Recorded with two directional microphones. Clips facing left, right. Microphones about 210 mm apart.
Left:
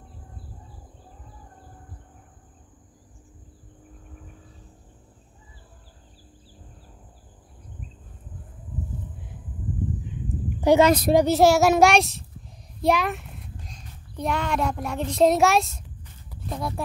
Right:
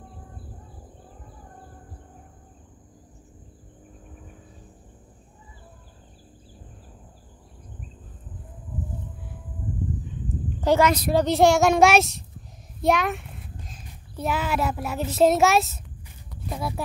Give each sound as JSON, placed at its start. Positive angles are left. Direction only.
{"t": 10.2, "sound": "a sound", "side_deg": 15}
{"t": 10.8, "sound": "a woman's voice", "side_deg": 25}
{"t": 11.1, "sound": "a child's voice", "side_deg": 5}
{"t": 16.4, "sound": "clip-clop", "side_deg": -5}